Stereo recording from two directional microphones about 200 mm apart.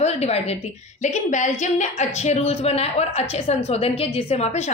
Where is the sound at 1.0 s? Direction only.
35° left (ahead or behind).